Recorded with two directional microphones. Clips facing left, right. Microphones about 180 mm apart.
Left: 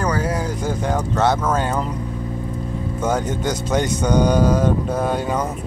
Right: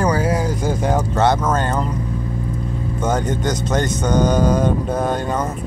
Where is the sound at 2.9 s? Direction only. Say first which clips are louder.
Right 1 dB; 10° left (ahead or behind).